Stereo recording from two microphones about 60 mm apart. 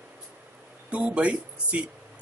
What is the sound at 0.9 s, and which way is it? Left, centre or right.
Speech, right.